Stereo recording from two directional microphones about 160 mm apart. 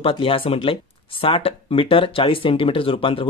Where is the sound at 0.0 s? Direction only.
35° left (ahead or behind).